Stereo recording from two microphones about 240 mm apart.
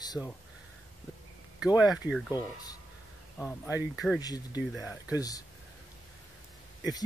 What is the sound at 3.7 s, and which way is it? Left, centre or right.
Speech, centre.